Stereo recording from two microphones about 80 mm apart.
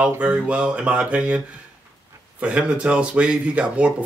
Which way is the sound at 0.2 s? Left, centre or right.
Centre.